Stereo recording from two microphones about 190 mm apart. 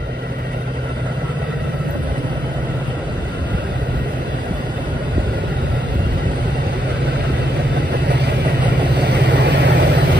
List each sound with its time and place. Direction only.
8.1 s vehicle: 65° right (ahead or behind)